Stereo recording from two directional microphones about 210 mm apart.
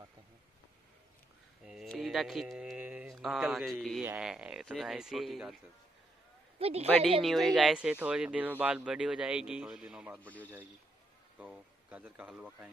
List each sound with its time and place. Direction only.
1.6 s a sound: 5° right (ahead or behind)
4.0 s speech: 5° right (ahead or behind)
6.6 s a woman's voice: 30° right (ahead or behind)
7.2 s speech: centre (ahead or behind)
10.2 s a man's voice: 5° left (ahead or behind)
11.3 s speech: 5° right (ahead or behind)